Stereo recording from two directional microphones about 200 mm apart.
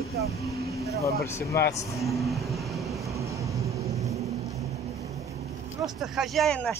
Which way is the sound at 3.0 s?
15° right (ahead or behind).